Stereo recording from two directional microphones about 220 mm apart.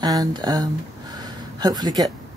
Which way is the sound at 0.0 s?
15° right (ahead or behind).